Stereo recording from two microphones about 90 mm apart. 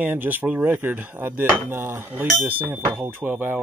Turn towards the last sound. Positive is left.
turn(degrees=-20)  # may be behind; listen again after turning